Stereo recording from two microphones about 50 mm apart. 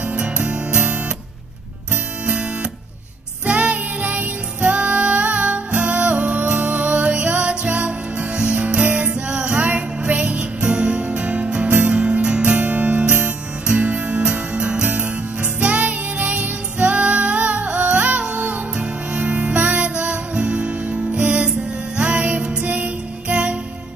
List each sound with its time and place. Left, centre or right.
0.0 s music: right
3.4 s music: right
8.8 s music: right
9.1 s music: right